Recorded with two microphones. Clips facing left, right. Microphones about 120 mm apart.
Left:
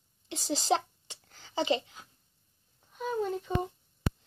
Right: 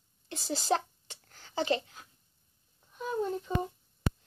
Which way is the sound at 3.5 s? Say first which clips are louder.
Left 2 dB; 20° left (ahead or behind).